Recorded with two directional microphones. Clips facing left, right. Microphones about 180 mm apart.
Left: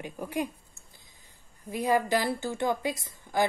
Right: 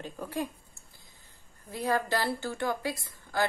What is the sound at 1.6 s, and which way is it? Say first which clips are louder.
Speech: left 3 dB; 15° left (ahead or behind).